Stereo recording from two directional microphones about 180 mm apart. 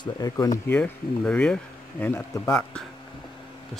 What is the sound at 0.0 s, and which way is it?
Speech, 20° left (ahead or behind).